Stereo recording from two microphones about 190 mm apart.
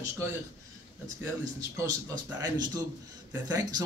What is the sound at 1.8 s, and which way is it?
A man's voice, 15° right (ahead or behind).